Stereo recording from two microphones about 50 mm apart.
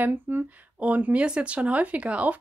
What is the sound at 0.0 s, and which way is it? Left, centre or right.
Speech, right.